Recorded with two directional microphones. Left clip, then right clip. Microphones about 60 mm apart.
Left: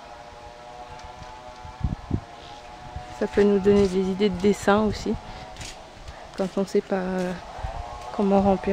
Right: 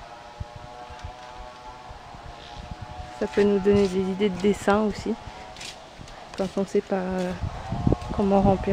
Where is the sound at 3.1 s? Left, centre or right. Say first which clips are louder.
Left 1 dB; left.